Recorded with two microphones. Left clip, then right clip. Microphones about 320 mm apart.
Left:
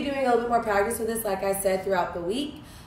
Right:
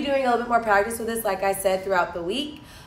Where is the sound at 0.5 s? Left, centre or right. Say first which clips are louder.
Right 3 dB; centre.